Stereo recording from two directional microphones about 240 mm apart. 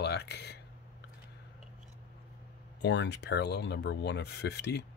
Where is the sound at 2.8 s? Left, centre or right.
Left.